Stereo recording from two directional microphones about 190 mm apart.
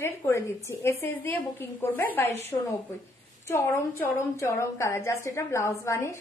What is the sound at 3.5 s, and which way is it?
A woman's voice, 15° left (ahead or behind).